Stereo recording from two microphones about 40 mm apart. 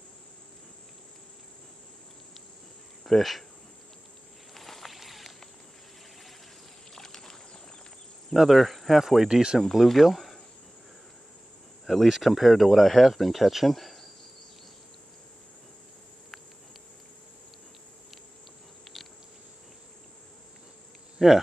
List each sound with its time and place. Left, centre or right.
3.0 s speech: centre
4.6 s a sound: centre
6.9 s boat: centre
8.4 s speech: centre
9.3 s speech: centre
9.6 s speech: centre
11.8 s speech: centre
13.7 s insect: centre
21.2 s speech: centre